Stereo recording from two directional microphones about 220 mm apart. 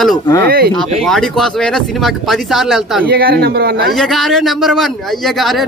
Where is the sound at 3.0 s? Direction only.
45° right (ahead or behind).